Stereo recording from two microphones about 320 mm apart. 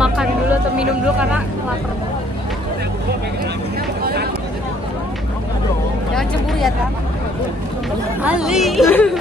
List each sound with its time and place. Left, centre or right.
0.0 s music: centre
4.0 s a sound: right
8.2 s chatter: centre